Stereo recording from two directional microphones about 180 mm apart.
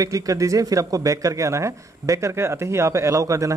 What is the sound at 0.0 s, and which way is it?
Speech, 20° right (ahead or behind).